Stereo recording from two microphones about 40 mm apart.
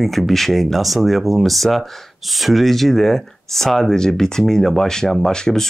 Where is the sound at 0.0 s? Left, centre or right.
Centre.